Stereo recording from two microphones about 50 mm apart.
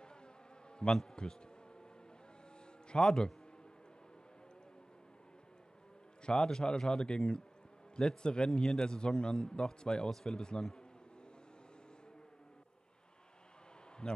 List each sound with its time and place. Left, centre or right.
0.8 s a man's voice: centre
2.9 s a man's voice: centre
6.2 s a man's voice: centre
14.0 s a man's voice: centre